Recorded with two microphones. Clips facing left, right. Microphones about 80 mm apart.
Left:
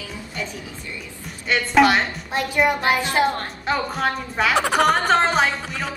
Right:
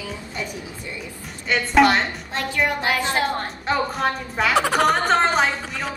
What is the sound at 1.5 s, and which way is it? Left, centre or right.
Speech, centre.